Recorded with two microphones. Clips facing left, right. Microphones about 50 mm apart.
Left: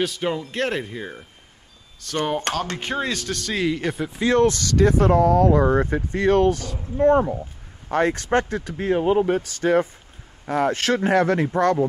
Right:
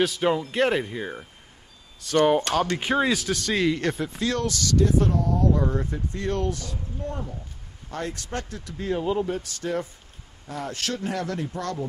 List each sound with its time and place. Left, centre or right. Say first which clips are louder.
0.0 s speech: right 2 dB; centre
2.5 s speech: right 1 dB; left
2.8 s speech: right 3 dB; centre
4.2 s speech: left 11 dB; left
4.7 s speech: left 5 dB; left